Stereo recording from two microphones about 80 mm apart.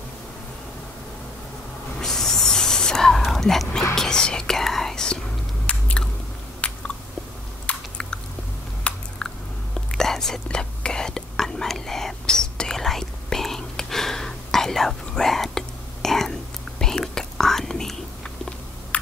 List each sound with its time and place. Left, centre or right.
2.0 s a sound: centre
3.9 s whispering: centre
5.7 s biting: centre
7.6 s chewing: centre
8.9 s biting: centre
9.8 s whispering: centre